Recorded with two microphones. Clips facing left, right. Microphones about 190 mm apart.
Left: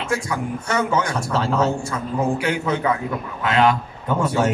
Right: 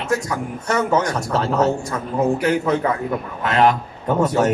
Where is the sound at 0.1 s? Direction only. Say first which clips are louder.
Right 2 dB; 40° right (ahead or behind).